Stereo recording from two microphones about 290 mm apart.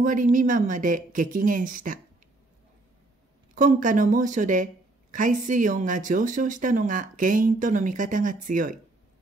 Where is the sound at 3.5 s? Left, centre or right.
Right.